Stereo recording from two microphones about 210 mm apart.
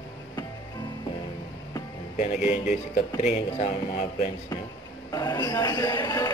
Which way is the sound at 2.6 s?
30° left (ahead or behind).